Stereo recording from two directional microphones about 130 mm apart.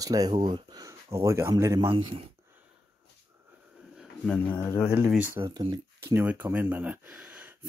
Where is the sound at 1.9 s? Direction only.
35° right (ahead or behind).